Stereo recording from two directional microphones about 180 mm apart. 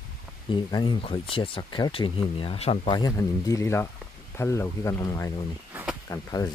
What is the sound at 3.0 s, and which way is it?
Speech, 20° left (ahead or behind).